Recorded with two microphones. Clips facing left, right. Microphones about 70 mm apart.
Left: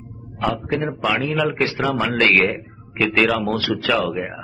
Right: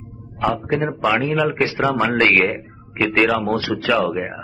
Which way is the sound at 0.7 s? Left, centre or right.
Right.